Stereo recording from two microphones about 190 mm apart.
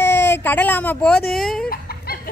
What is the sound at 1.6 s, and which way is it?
Chicken, 50° left (ahead or behind).